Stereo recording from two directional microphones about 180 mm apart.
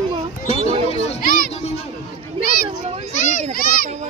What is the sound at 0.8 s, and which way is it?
Children playing, 35° left (ahead or behind).